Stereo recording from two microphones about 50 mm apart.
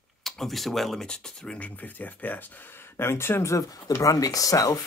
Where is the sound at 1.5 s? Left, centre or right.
Left.